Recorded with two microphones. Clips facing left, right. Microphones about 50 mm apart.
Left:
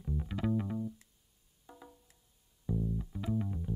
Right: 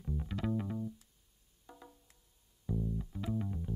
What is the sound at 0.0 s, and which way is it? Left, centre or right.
Music, centre.